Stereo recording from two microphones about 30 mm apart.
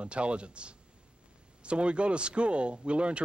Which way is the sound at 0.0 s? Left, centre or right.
Right.